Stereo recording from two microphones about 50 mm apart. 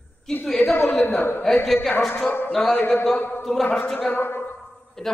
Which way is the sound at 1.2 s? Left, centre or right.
Left.